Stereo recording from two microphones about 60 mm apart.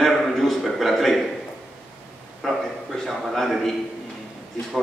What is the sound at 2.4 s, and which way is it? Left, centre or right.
A man's voice, centre.